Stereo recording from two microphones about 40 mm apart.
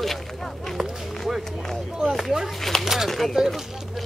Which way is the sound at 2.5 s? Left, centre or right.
Centre.